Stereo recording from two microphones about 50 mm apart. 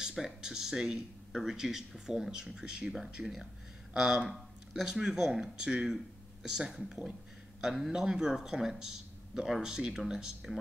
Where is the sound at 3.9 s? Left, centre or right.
Centre.